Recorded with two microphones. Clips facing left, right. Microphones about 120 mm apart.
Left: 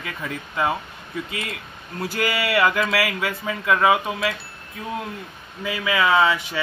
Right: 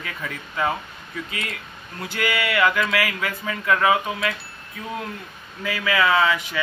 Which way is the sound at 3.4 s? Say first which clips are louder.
Left 1 dB; 15° left (ahead or behind).